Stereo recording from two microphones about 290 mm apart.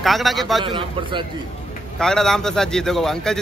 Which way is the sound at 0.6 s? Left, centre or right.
Centre.